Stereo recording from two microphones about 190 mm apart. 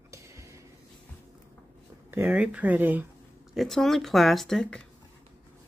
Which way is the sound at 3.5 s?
Centre (ahead or behind).